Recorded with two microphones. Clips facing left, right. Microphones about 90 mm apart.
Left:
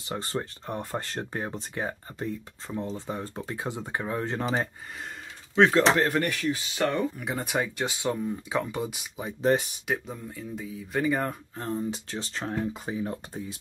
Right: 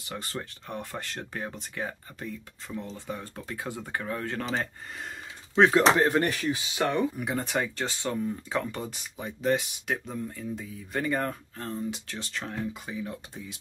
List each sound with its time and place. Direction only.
0.1 s speech: 35° left (ahead or behind)
5.6 s speech: 10° right (ahead or behind)
6.1 s speech: 30° right (ahead or behind)
6.9 s speech: centre (ahead or behind)
9.4 s speech: 40° left (ahead or behind)
9.8 s speech: 5° left (ahead or behind)
11.5 s speech: 20° left (ahead or behind)
11.9 s speech: 30° left (ahead or behind)